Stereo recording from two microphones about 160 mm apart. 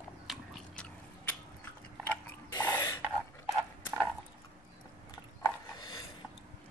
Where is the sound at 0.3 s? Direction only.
Centre (ahead or behind).